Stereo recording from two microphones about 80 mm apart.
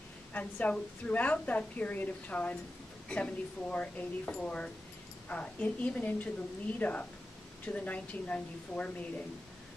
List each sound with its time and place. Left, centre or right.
0.3 s a woman's voice: centre